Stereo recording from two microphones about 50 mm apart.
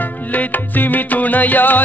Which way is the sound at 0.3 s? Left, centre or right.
Left.